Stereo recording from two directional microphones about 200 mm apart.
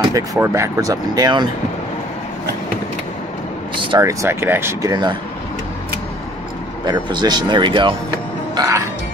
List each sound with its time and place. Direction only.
0.1 s speech: 15° right (ahead or behind)
3.9 s speech: 15° right (ahead or behind)
6.9 s speech: 20° right (ahead or behind)